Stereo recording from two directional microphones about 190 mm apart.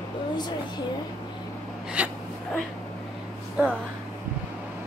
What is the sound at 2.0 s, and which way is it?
Speech, 10° right (ahead or behind).